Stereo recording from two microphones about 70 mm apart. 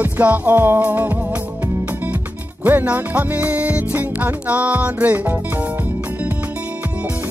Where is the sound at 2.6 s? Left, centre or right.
Right.